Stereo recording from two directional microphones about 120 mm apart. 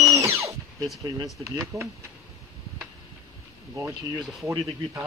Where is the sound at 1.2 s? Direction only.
30° right (ahead or behind).